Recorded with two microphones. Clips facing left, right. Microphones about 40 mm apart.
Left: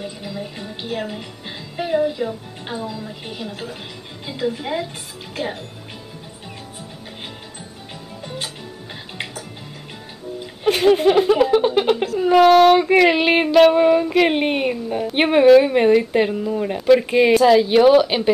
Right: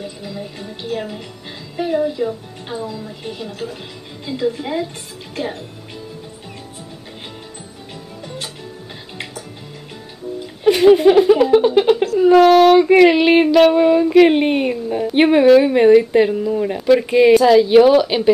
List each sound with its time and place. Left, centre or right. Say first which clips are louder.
0.0 s a woman's voice: even; centre
10.4 s music: right 5 dB; centre
11.0 s speech: right 4 dB; centre
12.3 s female singing: right 2 dB; centre